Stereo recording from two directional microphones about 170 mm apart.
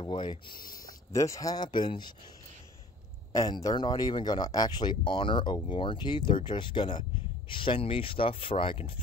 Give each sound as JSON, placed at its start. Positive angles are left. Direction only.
{"t": 0.0, "sound": "speech", "side_deg": 25}
{"t": 3.3, "sound": "speech", "side_deg": 25}